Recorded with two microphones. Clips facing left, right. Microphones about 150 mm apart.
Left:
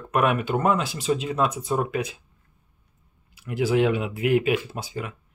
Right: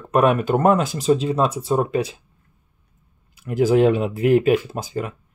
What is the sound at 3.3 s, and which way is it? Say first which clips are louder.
Speech: right 6 dB; 45° right (ahead or behind).